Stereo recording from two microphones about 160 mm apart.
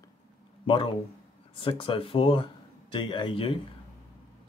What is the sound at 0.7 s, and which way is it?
A man's voice, 30° left (ahead or behind).